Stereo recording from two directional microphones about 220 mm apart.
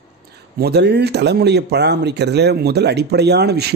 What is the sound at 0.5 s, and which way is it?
Speech, 45° right (ahead or behind).